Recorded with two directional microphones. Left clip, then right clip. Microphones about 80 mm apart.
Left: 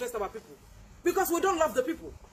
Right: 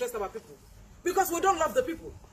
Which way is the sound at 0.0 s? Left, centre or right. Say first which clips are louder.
Right 1 dB; left.